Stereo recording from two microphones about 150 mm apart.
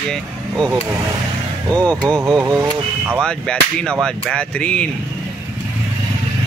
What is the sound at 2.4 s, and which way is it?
Speech, 20° right (ahead or behind).